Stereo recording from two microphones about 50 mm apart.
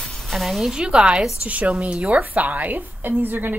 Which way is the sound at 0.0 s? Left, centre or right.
Centre.